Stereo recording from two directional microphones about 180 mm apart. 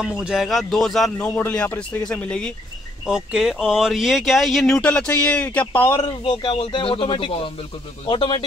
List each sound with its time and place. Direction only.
0.0 s speech: 5° right (ahead or behind)
5.9 s a man's voice: 25° left (ahead or behind)